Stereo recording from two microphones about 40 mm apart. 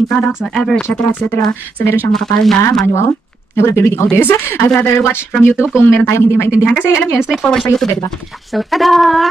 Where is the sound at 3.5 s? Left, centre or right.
Left.